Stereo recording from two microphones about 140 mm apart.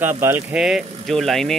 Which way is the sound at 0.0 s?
15° right (ahead or behind).